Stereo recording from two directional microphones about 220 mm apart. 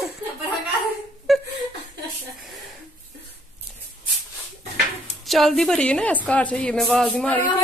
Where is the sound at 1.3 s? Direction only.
Centre (ahead or behind).